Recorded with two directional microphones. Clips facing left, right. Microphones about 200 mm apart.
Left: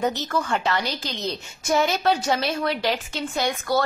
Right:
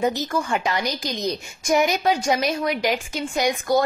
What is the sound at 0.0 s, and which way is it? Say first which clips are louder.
A woman's voice: right 2 dB; 10° right (ahead or behind).